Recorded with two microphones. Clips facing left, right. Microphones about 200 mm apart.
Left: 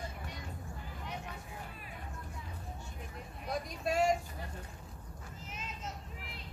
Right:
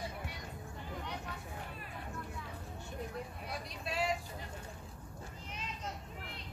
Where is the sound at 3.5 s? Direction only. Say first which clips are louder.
Left 12 dB; 45° left (ahead or behind).